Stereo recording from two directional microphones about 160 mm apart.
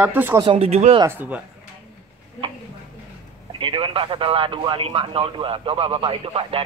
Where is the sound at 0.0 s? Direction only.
10° right (ahead or behind).